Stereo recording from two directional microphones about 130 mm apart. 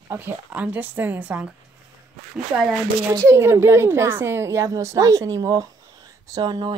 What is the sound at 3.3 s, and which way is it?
A woman's voice, 20° right (ahead or behind).